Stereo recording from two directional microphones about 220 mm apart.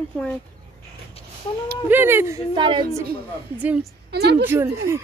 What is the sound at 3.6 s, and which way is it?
Speech, 5° right (ahead or behind).